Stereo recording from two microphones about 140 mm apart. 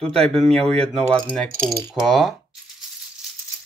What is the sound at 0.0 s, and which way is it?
Speech, 5° left (ahead or behind).